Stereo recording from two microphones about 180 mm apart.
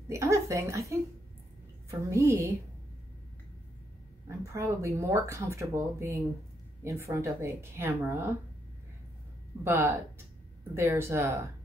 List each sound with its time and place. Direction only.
0.1 s a woman's voice: 15° right (ahead or behind)
4.3 s speech: 15° right (ahead or behind)
9.7 s speech: 15° right (ahead or behind)